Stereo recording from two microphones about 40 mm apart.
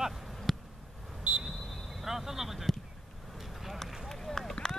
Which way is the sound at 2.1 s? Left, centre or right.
Centre.